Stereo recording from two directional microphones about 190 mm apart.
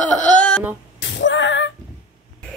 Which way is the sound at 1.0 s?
70° left (ahead or behind).